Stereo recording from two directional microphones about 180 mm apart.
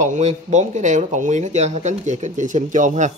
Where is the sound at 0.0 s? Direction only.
40° right (ahead or behind).